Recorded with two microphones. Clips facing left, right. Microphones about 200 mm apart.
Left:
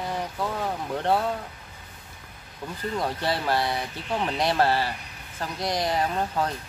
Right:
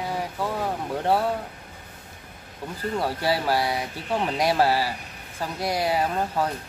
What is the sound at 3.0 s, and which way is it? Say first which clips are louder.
Speech: right 3 dB; 10° right (ahead or behind).